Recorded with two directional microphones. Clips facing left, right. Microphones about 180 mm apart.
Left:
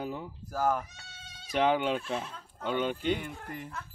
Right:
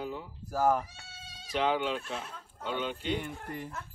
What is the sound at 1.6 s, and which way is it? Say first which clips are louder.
Speech: left 3 dB; 50° left (ahead or behind).